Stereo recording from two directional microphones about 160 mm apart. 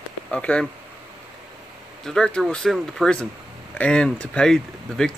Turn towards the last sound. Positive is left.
turn(degrees=0)  # may be behind; listen again after turning